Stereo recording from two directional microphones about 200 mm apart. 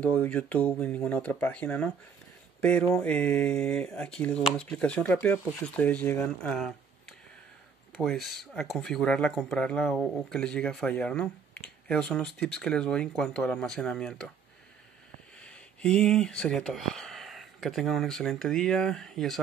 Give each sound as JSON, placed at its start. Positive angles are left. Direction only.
{"t": 0.0, "sound": "speech", "side_deg": 5}
{"t": 15.4, "sound": "speech", "side_deg": 5}